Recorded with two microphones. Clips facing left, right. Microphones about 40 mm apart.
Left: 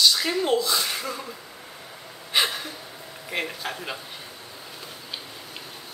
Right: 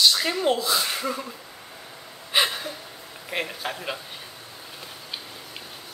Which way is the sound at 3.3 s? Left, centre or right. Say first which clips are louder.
Even; centre.